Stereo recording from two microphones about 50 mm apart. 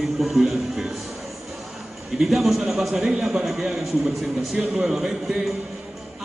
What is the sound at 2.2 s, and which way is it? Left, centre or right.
Speech, centre.